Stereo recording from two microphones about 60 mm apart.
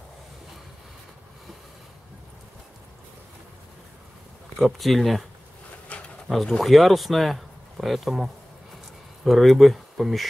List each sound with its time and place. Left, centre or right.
4.6 s speech: centre
5.9 s bee: centre
6.2 s speech: centre